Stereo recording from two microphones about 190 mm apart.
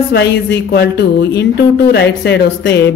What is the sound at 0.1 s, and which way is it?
A woman's voice, 60° left (ahead or behind).